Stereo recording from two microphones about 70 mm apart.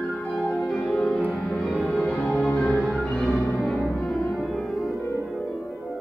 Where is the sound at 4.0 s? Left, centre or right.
Centre.